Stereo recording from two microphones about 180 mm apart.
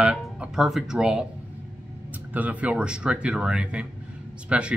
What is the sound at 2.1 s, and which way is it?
Speech, 10° right (ahead or behind).